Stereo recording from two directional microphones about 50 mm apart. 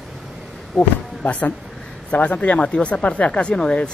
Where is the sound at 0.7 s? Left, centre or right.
Centre.